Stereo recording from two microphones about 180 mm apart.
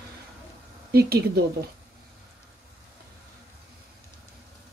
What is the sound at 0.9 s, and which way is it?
Speech, 60° right (ahead or behind).